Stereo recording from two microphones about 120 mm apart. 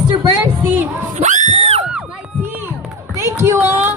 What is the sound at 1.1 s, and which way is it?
Music, 90° right.